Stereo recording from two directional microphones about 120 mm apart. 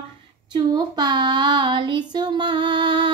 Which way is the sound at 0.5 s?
35° right (ahead or behind).